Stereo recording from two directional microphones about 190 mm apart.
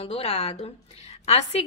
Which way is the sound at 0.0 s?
30° left (ahead or behind).